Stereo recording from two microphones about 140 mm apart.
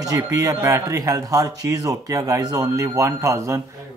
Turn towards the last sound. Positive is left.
turn(degrees=-20)  # may be behind; listen again after turning